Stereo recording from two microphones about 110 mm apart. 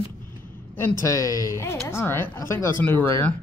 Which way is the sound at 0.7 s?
25° left (ahead or behind).